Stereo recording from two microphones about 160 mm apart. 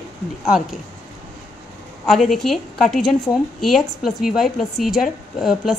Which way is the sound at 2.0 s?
Centre (ahead or behind).